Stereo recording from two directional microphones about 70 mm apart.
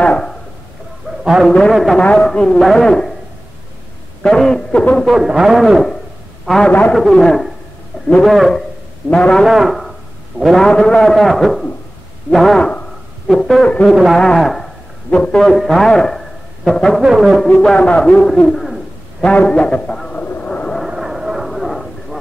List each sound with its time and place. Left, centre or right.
0.0 s a sound: centre
1.2 s a man's voice: centre
2.0 s a man's voice: centre
4.2 s a man's voice: centre
5.0 s a man's voice: centre
9.1 s a man's voice: centre
9.4 s a man's voice: centre
14.1 s a man's voice: centre
15.0 s a man's voice: centre
15.3 s a man's voice: centre
17.0 s a man's voice: centre
17.5 s a man's voice: centre
19.2 s a sound: centre
20.7 s a sound: centre